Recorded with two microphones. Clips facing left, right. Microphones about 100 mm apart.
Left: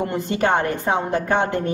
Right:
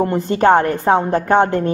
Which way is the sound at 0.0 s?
35° right (ahead or behind).